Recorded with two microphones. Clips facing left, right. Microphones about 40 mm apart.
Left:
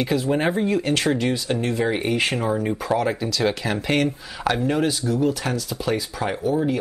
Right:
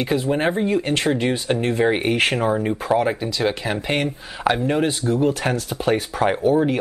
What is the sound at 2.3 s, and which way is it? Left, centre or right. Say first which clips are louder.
Speech: right 3 dB; centre.